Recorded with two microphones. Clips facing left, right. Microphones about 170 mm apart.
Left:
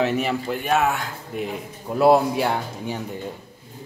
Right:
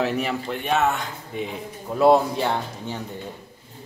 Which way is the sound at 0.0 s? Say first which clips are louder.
Left 2 dB; centre (ahead or behind).